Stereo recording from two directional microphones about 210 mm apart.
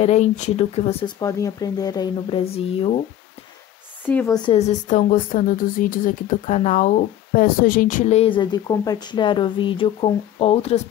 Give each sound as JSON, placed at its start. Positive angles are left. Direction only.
{"t": 0.0, "sound": "speech", "side_deg": 35}
{"t": 1.2, "sound": "a woman's voice", "side_deg": 15}
{"t": 4.1, "sound": "speech", "side_deg": 10}
{"t": 4.5, "sound": "a woman's voice", "side_deg": 30}